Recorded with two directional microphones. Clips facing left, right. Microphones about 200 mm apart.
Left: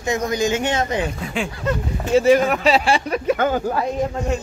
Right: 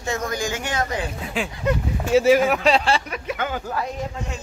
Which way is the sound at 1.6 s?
5° right (ahead or behind).